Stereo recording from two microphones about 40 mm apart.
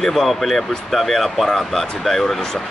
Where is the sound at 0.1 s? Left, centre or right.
Centre.